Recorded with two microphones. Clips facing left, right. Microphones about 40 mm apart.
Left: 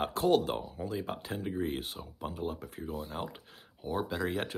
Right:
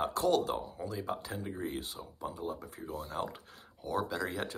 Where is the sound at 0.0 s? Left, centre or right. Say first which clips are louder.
Left 2 dB; left.